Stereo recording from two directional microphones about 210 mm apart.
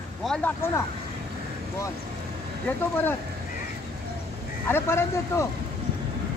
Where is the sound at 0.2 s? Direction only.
Centre (ahead or behind).